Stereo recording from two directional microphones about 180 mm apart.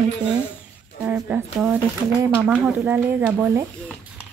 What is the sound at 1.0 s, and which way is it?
Speech, 10° right (ahead or behind).